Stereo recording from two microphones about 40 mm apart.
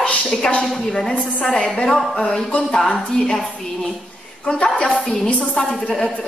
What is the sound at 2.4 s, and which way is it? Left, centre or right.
Speech, left.